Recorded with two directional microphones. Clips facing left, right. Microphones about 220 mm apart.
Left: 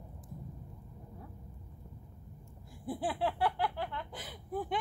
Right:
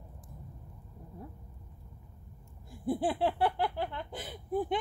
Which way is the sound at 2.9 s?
25° right (ahead or behind).